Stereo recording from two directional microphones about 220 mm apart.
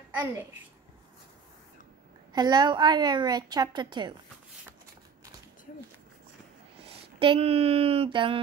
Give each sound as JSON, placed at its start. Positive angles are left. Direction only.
{"t": 0.2, "sound": "a child's voice", "side_deg": -10}
{"t": 2.3, "sound": "a woman's voice", "side_deg": -20}
{"t": 6.8, "sound": "speech", "side_deg": -25}